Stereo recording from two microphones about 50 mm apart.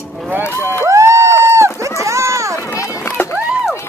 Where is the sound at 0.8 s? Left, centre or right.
Right.